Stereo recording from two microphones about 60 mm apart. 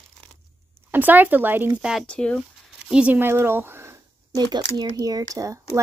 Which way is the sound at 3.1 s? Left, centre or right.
Right.